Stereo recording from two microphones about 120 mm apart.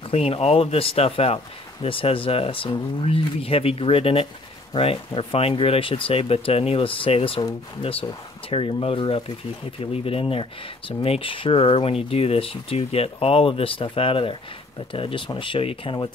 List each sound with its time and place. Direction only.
0.1 s speech: 55° left (ahead or behind)